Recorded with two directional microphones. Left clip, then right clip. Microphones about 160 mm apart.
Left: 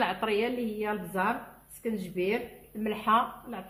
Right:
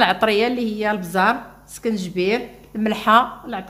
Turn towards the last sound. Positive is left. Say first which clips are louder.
# right 10 dB
turn(degrees=-90)